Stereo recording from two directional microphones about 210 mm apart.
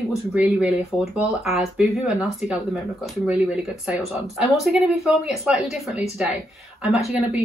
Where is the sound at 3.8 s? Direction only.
Centre (ahead or behind).